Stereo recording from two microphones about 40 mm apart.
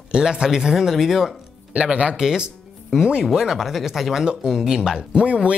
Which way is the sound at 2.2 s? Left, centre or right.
Centre.